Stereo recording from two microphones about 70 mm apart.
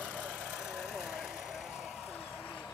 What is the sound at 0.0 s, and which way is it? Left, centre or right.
Vehicle, centre.